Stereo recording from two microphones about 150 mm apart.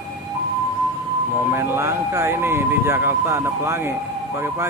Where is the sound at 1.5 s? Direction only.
15° right (ahead or behind).